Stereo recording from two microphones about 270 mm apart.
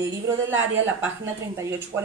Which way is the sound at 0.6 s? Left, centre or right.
Right.